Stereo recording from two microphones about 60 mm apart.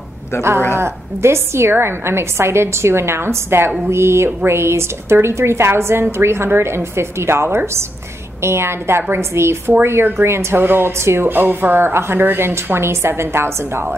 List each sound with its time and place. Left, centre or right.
0.4 s a woman's voice: right
11.2 s a woman's voice: right